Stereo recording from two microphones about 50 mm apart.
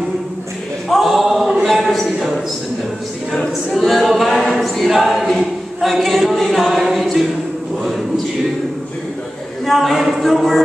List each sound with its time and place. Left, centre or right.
0.8 s choir: centre
1.7 s a sound: centre
3.7 s a capella: centre
5.4 s choir: centre
6.7 s a capella: centre
9.7 s a woman's voice: centre